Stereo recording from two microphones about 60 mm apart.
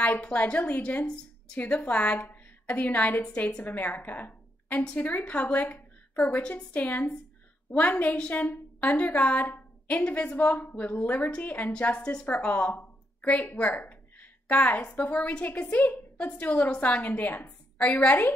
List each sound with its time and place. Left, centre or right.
0.2 s a woman's voice: left